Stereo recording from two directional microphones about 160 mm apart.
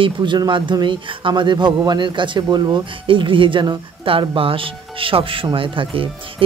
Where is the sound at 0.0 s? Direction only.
30° right (ahead or behind).